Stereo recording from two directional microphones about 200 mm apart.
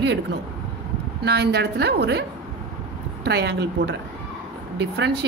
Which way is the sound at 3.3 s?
60° right (ahead or behind).